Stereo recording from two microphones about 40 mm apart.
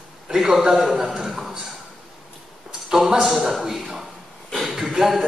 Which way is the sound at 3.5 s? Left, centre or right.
Centre.